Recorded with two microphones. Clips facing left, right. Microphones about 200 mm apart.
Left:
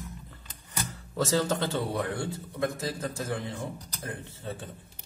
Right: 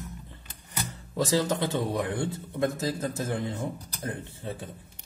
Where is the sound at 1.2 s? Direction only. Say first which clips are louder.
Right 1 dB; 15° right (ahead or behind).